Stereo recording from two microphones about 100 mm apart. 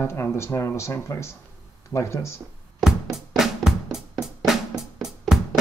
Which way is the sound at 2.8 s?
5° right (ahead or behind).